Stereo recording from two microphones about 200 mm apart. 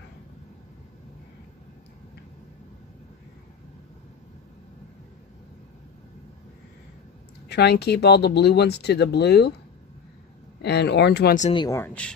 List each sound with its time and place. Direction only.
7.4 s speech: 55° left (ahead or behind)
10.6 s speech: 55° left (ahead or behind)
11.5 s speech: 15° left (ahead or behind)